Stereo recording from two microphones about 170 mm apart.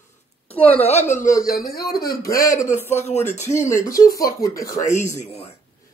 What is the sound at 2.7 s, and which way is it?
Speech, 40° left (ahead or behind).